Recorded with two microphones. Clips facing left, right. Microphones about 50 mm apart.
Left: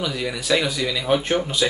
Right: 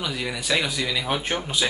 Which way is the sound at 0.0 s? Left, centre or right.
Centre.